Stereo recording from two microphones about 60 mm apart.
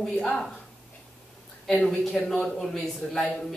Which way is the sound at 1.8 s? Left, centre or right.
Centre.